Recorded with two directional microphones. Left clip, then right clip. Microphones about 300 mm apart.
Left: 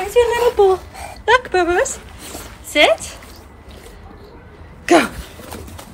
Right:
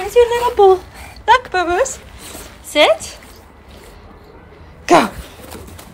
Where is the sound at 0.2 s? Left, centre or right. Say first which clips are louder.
Right 2 dB; right.